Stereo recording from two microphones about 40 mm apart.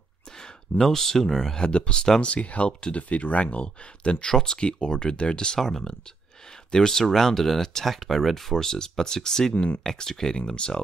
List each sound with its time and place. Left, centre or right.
0.4 s speech: centre
1.6 s speech: left
2.3 s speech: left
4.3 s speech: centre
4.6 s speech: left
6.7 s speech: centre
9.5 s speech: left
9.8 s speech: centre